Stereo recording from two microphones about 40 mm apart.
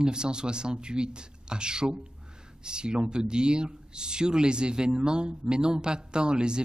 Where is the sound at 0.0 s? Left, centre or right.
Right.